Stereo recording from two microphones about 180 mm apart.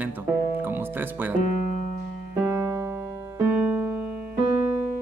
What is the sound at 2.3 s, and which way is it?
Piano, 10° right (ahead or behind).